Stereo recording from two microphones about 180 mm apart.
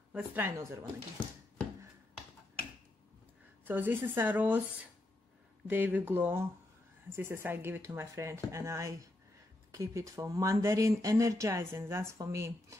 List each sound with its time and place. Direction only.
0.1 s speech: 10° right (ahead or behind)
3.6 s speech: 10° right (ahead or behind)